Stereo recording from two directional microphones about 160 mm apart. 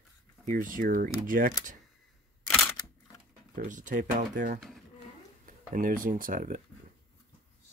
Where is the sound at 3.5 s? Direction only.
55° right (ahead or behind).